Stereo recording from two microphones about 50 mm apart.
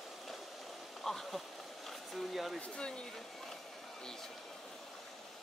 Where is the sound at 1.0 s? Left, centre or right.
Centre.